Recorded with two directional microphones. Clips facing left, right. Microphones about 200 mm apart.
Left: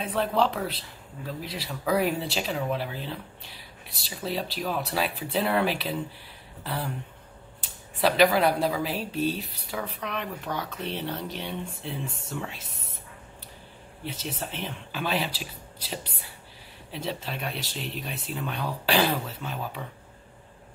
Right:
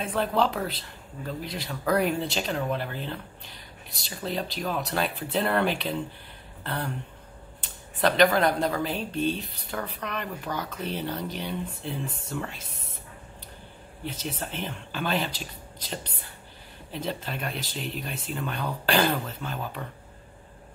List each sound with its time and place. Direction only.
0.0 s speech: centre (ahead or behind)
14.0 s speech: centre (ahead or behind)